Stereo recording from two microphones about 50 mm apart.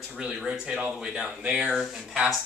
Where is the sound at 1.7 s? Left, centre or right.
Centre.